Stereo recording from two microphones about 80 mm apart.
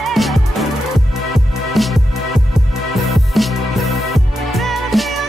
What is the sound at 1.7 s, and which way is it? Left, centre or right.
Music, centre.